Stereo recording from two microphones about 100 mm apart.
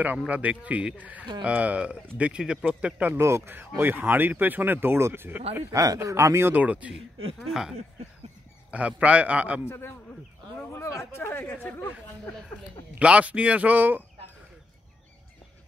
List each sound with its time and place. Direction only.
0.3 s speech: 15° right (ahead or behind)
6.5 s speech: 15° right (ahead or behind)
8.7 s speech: 15° right (ahead or behind)
9.7 s speech: 25° left (ahead or behind)
13.0 s speech: 10° right (ahead or behind)